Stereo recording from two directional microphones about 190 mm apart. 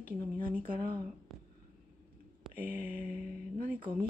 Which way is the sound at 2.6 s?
50° right (ahead or behind).